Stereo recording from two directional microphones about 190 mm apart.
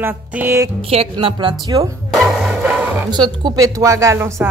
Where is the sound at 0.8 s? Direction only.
30° right (ahead or behind).